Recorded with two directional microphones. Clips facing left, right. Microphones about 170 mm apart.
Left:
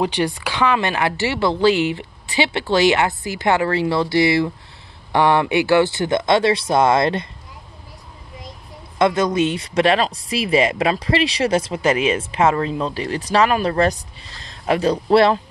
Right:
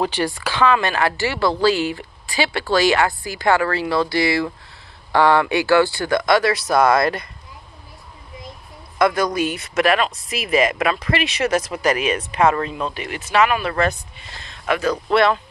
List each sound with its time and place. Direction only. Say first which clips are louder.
0.0 s speech: left 1 dB; 20° left (ahead or behind)
8.9 s speech: left 1 dB; 25° left (ahead or behind)